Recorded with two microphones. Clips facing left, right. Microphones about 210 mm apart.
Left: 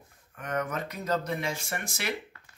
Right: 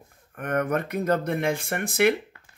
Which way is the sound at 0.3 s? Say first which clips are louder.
Right 7 dB; 55° right (ahead or behind).